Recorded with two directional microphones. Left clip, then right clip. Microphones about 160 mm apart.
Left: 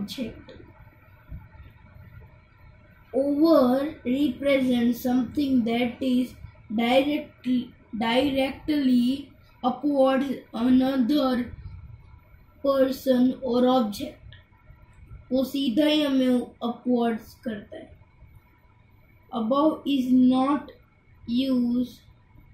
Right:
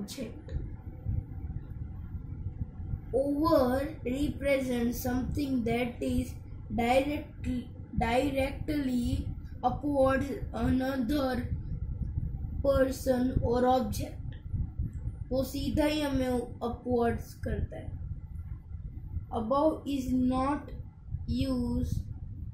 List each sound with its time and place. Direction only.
3.3 s a woman's voice: 20° right (ahead or behind)
12.6 s a woman's voice: 20° right (ahead or behind)
15.2 s a woman's voice: 20° right (ahead or behind)
19.3 s a woman's voice: 20° right (ahead or behind)